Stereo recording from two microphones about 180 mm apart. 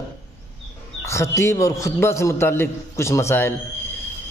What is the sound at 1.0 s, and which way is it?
A man's voice, 15° left (ahead or behind).